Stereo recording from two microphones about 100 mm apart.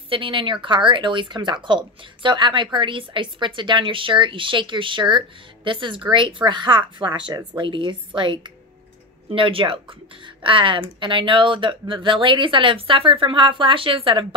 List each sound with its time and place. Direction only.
0.1 s a woman's voice: 60° right (ahead or behind)